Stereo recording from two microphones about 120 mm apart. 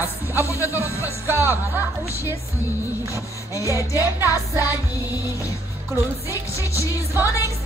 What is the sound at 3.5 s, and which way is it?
Music, 25° left (ahead or behind).